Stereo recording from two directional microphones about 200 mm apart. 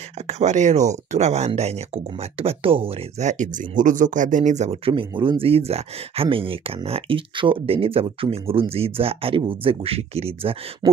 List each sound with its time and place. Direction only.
0.3 s speech: 35° right (ahead or behind)